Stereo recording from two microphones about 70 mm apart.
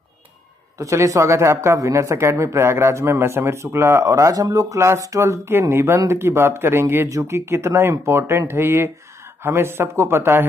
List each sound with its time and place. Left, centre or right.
0.7 s speech: right
4.7 s speech: right
7.1 s speech: right